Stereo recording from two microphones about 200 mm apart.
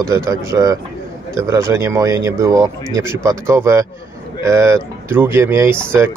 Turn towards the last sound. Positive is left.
turn(degrees=-10)  # may be behind; listen again after turning